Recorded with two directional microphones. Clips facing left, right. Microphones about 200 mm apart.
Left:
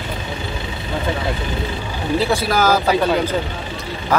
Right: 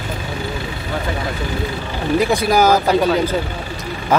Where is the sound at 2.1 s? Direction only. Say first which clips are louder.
Right 3 dB; 15° right (ahead or behind).